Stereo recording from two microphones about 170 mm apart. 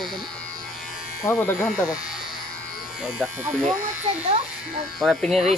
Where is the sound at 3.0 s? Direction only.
Centre (ahead or behind).